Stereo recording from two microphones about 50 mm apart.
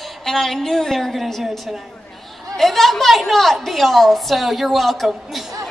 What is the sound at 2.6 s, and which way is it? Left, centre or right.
A woman's voice, centre.